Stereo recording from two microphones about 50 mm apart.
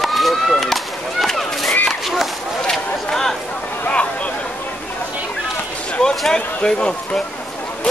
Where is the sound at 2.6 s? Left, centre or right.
Centre.